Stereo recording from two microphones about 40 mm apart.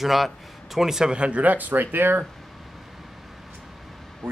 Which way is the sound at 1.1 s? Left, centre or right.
Right.